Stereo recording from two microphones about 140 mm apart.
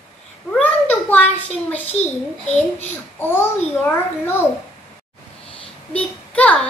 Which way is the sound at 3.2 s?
15° left (ahead or behind).